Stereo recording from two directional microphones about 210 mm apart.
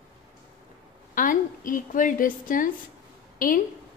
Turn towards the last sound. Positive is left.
turn(degrees=40)  # may be behind; listen again after turning